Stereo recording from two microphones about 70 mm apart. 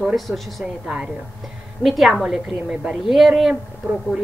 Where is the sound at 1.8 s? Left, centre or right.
Centre.